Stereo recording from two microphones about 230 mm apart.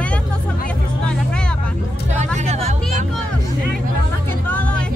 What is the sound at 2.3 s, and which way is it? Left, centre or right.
Music, right.